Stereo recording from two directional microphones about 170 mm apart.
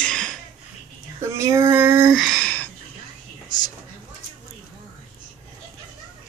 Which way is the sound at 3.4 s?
25° left (ahead or behind).